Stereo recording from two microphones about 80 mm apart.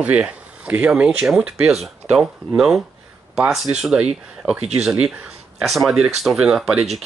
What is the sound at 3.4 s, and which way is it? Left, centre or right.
Speech, centre.